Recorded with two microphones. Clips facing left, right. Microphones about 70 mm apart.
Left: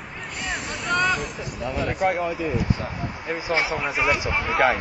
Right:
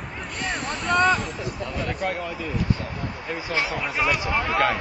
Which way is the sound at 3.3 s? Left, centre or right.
Left.